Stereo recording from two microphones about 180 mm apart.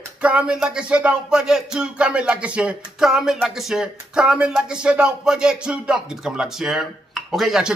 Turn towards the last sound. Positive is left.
turn(degrees=0)  # may be behind; listen again after turning